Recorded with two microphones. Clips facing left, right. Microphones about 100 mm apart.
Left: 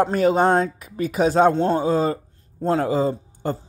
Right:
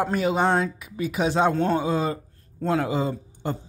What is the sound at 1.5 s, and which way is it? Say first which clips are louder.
A man's voice: left 3 dB; 30° left (ahead or behind).